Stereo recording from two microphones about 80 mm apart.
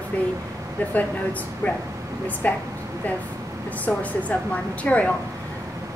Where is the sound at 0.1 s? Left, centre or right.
Centre.